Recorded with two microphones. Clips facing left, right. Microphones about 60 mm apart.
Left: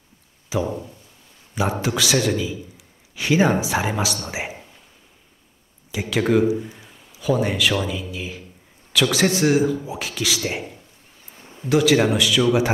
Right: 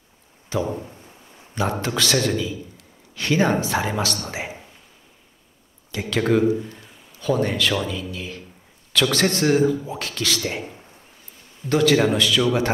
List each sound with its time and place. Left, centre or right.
0.5 s a man's voice: centre
5.9 s a man's voice: centre
11.3 s a sound: left
11.7 s a man's voice: centre